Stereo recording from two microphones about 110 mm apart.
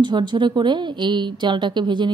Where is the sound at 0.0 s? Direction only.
45° right (ahead or behind).